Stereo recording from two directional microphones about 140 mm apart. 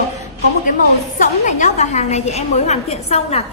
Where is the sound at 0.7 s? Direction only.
65° left (ahead or behind).